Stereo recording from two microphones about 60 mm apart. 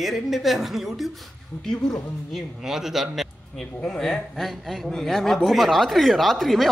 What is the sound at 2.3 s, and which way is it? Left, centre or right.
Speech, centre.